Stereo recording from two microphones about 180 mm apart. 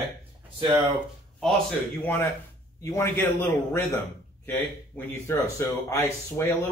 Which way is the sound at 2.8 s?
15° left (ahead or behind).